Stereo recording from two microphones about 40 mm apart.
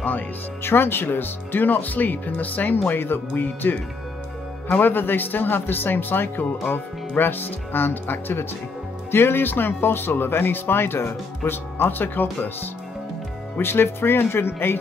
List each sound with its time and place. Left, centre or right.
0.7 s speech: left
2.9 s speech: left
9.1 s speech: left
13.6 s speech: left